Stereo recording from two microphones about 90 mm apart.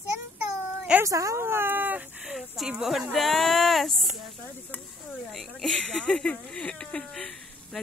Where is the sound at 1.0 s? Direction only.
35° right (ahead or behind); by 2.3 s 15° right (ahead or behind).